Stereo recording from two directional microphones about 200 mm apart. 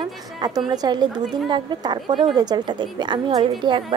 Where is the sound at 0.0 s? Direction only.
20° right (ahead or behind).